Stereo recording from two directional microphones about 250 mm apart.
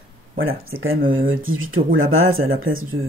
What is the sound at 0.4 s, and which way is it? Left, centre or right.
Speech, right.